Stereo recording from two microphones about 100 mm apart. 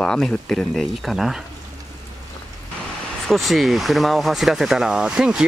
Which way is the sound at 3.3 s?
Centre (ahead or behind).